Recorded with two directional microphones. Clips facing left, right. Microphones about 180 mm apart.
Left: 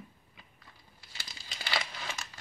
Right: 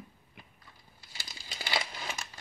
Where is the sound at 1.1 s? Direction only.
10° right (ahead or behind).